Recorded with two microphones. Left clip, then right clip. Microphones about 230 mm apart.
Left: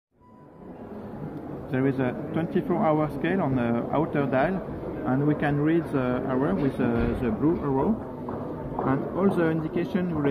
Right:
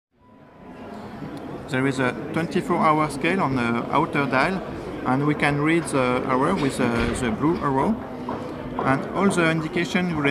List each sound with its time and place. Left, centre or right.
1.7 s speech: centre
8.8 s speech: right